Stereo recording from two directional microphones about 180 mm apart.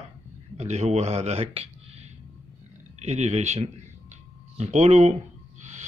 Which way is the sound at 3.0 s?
40° right (ahead or behind).